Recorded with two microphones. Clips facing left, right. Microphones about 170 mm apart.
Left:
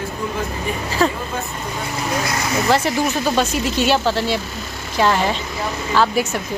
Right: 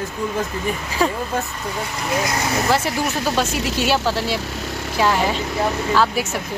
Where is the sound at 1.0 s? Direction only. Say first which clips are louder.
Left 2 dB; 10° right (ahead or behind).